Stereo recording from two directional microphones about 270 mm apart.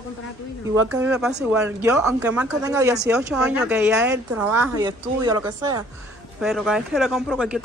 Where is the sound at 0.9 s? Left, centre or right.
Centre.